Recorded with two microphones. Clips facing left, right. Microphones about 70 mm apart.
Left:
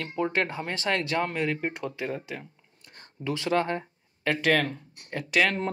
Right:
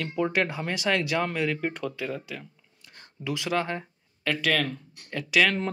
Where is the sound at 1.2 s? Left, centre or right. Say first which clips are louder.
Right 1 dB; left.